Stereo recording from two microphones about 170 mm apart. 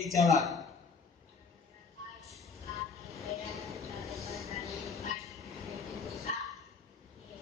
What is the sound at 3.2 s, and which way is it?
Train, centre (ahead or behind).